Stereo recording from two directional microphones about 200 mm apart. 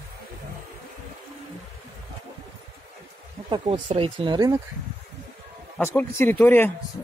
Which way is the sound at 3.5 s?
30° right (ahead or behind).